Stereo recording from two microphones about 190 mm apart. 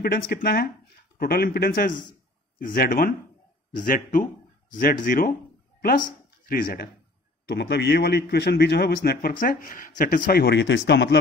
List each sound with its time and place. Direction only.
0.4 s speech: 50° left (ahead or behind)
7.4 s a man's voice: 60° left (ahead or behind)